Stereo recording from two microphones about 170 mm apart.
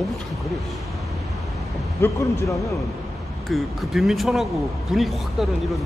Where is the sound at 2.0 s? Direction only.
15° left (ahead or behind).